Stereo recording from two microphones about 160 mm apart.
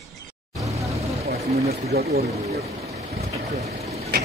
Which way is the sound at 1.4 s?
40° right (ahead or behind).